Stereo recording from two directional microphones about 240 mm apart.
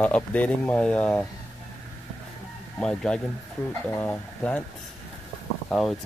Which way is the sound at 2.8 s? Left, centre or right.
Centre.